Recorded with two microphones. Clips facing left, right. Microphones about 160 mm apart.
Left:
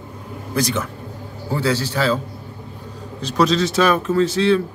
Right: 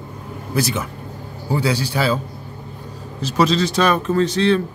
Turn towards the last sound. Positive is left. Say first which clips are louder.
# even
turn(degrees=5)  # may be behind; listen again after turning